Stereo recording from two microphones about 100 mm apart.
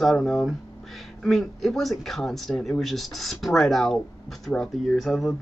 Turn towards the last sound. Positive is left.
turn(degrees=0)  # may be behind; listen again after turning